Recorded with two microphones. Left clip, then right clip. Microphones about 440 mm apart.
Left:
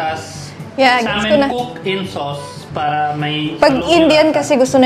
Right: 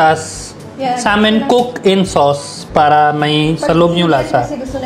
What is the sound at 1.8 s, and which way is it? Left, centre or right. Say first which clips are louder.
Speech: right 10 dB; right.